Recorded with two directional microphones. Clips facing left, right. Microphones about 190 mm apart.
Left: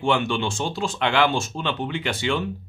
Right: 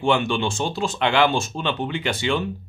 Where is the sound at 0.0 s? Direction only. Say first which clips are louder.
Right 2 dB; 20° right (ahead or behind).